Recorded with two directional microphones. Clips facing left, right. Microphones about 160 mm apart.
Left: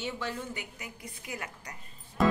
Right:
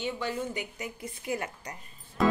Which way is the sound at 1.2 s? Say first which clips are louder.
Right 8 dB; 30° right (ahead or behind).